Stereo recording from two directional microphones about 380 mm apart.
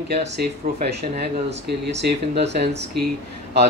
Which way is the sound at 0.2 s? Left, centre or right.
Right.